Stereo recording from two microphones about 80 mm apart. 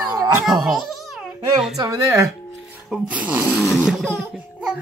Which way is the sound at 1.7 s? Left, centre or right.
Right.